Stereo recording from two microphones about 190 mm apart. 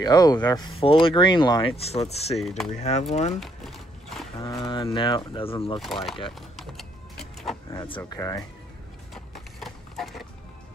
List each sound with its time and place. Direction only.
0.0 s speech: 20° left (ahead or behind)
2.3 s speech: centre (ahead or behind)
2.8 s speech: 35° left (ahead or behind)
3.3 s speech: centre (ahead or behind)
4.4 s speech: 20° left (ahead or behind)
6.5 s vehicle: centre (ahead or behind)
8.0 s speech: 15° left (ahead or behind)
9.1 s horse: centre (ahead or behind)